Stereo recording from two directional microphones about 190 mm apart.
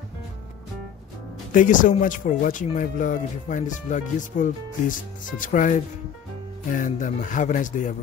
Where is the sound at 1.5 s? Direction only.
45° left (ahead or behind).